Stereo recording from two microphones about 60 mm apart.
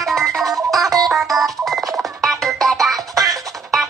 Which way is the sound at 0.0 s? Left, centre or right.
Centre.